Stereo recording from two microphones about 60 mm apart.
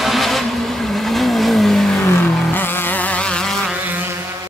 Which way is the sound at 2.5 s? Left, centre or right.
Left.